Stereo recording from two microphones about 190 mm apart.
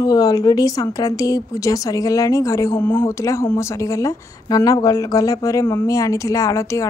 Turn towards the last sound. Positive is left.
turn(degrees=15)  # may be behind; listen again after turning